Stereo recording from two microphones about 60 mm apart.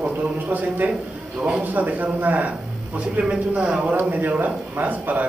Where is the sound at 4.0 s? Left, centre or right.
Right.